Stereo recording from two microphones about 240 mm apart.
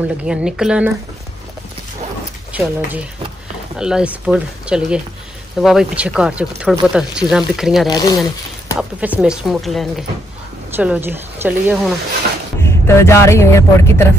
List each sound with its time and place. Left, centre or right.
0.2 s speech: centre
2.5 s speech: centre
7.9 s speech: centre
8.7 s speech: centre
12.6 s speech: centre